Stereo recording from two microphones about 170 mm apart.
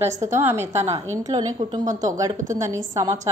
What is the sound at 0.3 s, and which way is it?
A woman's voice, 15° right (ahead or behind).